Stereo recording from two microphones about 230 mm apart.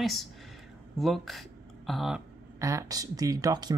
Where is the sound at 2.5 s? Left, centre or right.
Centre.